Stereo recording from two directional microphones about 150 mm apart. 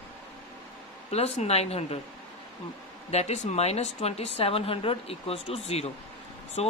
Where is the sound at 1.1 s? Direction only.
45° left (ahead or behind).